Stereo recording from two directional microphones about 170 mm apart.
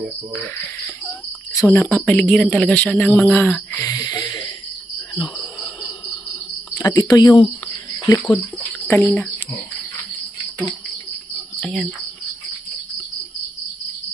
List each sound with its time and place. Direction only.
0.3 s speech: 5° left (ahead or behind)
1.5 s speech: 15° left (ahead or behind)
3.8 s speech: 25° left (ahead or behind)
5.1 s a sound: 25° left (ahead or behind)
6.8 s speech: 20° left (ahead or behind)
8.8 s speech: 10° left (ahead or behind)
11.6 s speech: centre (ahead or behind)